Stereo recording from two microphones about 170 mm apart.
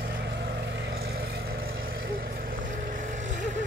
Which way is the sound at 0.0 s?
85° right.